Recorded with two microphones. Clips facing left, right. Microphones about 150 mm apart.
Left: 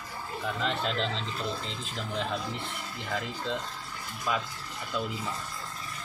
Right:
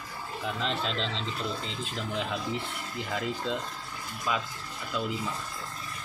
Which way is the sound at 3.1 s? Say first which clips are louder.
Right 1 dB; 5° right (ahead or behind).